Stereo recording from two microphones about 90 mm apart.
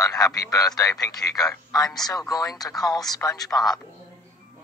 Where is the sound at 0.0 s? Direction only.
45° left (ahead or behind).